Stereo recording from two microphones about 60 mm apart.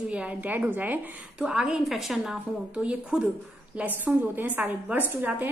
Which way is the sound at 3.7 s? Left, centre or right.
Right.